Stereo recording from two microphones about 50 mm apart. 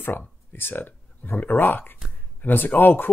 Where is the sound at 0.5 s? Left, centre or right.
Left.